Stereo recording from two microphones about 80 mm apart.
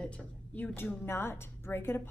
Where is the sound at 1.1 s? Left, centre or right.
Left.